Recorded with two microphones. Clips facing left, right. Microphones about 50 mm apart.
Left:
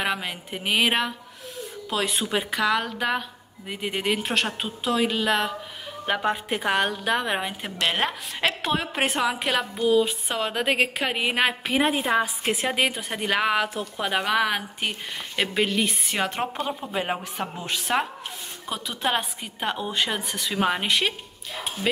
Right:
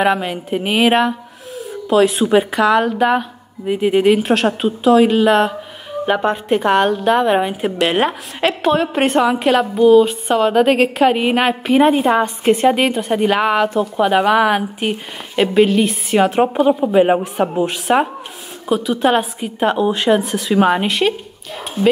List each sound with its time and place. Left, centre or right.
0.0 s speech: centre
16.2 s speech: centre
18.7 s speech: centre
20.8 s speech: centre